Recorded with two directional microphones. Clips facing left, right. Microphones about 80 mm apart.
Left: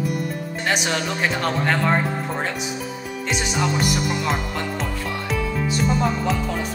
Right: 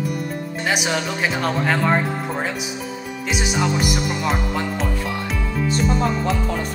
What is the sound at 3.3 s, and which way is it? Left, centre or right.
Speech, centre.